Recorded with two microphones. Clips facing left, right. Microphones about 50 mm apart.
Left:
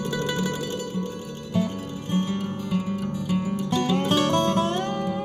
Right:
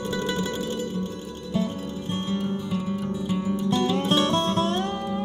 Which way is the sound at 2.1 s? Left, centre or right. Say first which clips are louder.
Left 3 dB; left.